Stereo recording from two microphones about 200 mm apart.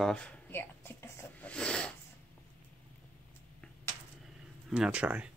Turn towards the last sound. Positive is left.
turn(degrees=-5)  # may be behind; listen again after turning